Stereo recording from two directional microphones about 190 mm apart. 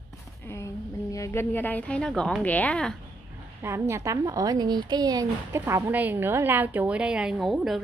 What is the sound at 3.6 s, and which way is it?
A woman's voice, 15° right (ahead or behind).